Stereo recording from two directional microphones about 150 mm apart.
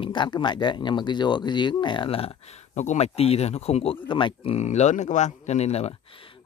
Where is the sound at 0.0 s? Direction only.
30° left (ahead or behind).